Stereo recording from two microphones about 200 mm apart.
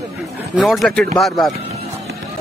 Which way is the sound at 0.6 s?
Centre (ahead or behind).